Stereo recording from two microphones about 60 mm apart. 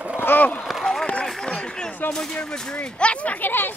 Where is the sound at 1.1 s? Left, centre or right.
Centre.